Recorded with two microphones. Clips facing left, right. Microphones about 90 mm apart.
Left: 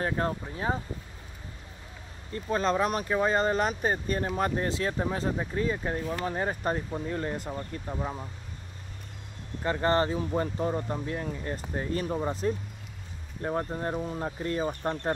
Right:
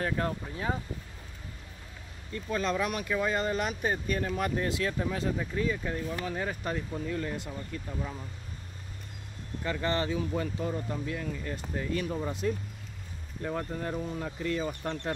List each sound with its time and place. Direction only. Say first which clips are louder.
0.0 s speech: left 2 dB; 30° left (ahead or behind)
2.3 s speech: left 4 dB; 35° left (ahead or behind)
9.6 s speech: left 5 dB; 40° left (ahead or behind)